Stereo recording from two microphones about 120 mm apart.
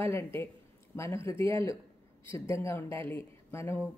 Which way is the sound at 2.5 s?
25° left (ahead or behind).